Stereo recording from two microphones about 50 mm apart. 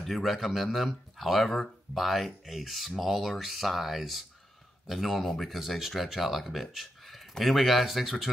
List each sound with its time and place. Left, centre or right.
0.0 s speech: centre
5.6 s speech: centre